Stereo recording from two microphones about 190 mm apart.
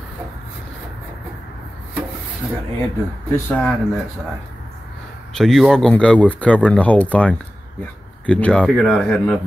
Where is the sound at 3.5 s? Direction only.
Centre (ahead or behind).